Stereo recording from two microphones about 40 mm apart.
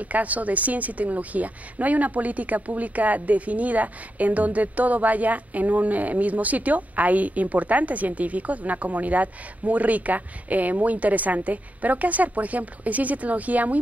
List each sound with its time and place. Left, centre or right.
0.0 s a woman's voice: right